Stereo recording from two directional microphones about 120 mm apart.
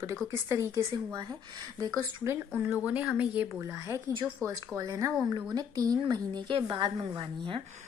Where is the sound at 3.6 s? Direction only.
25° right (ahead or behind).